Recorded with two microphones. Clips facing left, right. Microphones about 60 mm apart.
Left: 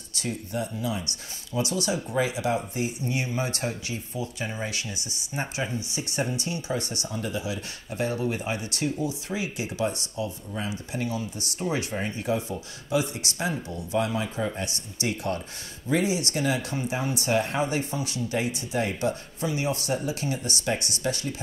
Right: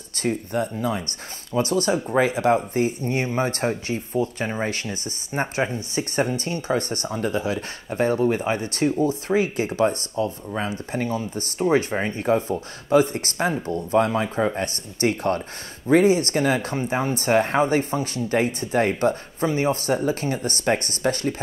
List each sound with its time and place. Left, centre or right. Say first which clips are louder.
0.1 s speech: right 7 dB; right